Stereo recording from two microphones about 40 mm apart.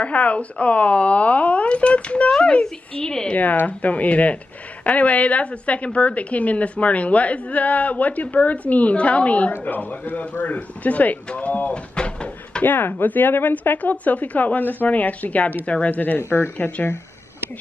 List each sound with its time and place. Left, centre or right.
0.0 s a woman's voice: left
2.6 s a woman's voice: centre
3.6 s a woman's voice: left
11.7 s a sound: left
12.6 s a woman's voice: left
15.9 s speech: left
16.2 s speech: left